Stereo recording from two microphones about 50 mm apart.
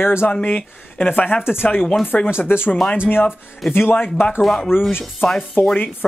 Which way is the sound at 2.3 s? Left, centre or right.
Left.